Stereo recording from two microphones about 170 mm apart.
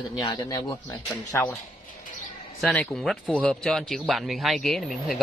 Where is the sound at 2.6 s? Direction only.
5° left (ahead or behind).